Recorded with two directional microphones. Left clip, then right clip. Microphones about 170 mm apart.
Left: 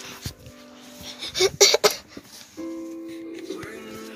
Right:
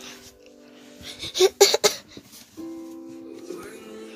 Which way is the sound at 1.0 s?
35° right (ahead or behind).